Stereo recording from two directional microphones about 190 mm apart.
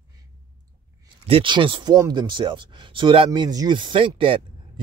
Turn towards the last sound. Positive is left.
turn(degrees=-30)  # may be behind; listen again after turning